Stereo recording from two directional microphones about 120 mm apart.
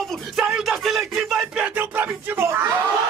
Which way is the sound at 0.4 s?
Centre (ahead or behind).